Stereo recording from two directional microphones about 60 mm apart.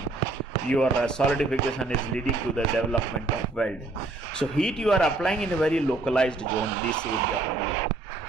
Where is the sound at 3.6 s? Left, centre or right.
Centre.